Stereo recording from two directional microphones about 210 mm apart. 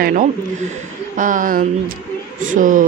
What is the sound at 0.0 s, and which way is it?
Speech, 40° right (ahead or behind).